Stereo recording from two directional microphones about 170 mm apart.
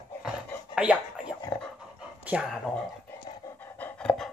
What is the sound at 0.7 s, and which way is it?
Scratching, 5° right (ahead or behind).